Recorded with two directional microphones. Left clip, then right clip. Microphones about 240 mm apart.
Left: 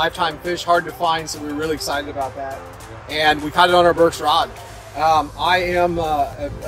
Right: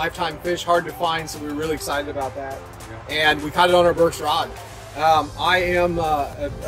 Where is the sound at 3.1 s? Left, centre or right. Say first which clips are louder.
Left 2 dB; centre.